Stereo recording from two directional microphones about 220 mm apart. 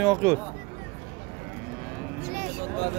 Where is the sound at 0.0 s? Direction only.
10° right (ahead or behind).